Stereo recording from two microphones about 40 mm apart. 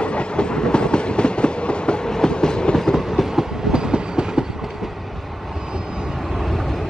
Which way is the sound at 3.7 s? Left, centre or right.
Right.